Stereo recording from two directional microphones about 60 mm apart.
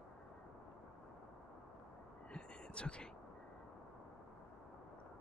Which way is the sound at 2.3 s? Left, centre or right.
Centre.